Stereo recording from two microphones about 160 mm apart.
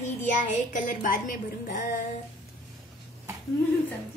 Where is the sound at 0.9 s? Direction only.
55° left (ahead or behind).